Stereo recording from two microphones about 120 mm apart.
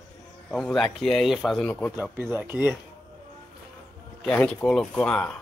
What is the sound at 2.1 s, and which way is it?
Speech, 20° right (ahead or behind).